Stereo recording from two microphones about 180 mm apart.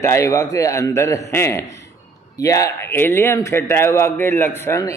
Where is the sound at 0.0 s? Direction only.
15° left (ahead or behind).